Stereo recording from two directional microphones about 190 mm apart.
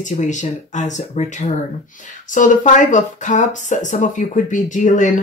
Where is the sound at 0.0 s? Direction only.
40° left (ahead or behind).